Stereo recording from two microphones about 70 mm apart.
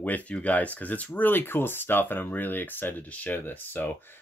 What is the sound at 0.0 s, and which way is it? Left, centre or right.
Speech, left.